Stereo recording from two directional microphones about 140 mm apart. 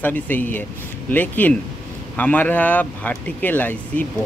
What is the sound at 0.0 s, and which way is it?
Speech, 15° left (ahead or behind).